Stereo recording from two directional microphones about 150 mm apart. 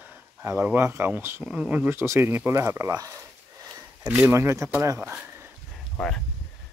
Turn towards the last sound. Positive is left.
turn(degrees=0)  # may be behind; listen again after turning